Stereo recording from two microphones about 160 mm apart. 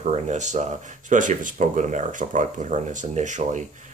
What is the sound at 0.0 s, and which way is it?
Speech, 45° right (ahead or behind).